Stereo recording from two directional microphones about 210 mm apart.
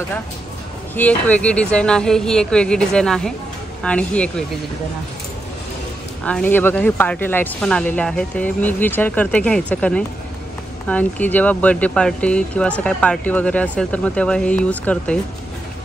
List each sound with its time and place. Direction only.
0.9 s speech: 5° left (ahead or behind)
6.2 s speech: 5° left (ahead or behind)